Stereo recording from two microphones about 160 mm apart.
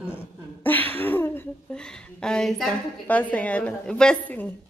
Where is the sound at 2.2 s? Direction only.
5° left (ahead or behind).